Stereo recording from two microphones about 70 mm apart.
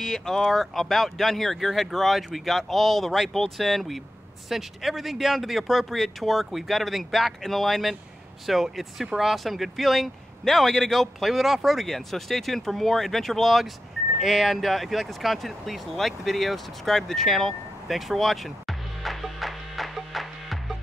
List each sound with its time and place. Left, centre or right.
0.0 s speech: centre